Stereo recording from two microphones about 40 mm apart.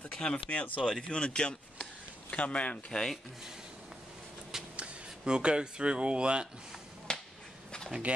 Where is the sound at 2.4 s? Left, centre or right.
Left.